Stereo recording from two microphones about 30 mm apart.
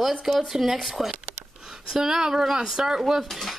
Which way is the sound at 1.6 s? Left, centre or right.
Centre.